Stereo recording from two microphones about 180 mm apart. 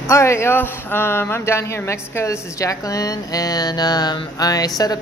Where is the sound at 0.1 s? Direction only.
15° left (ahead or behind).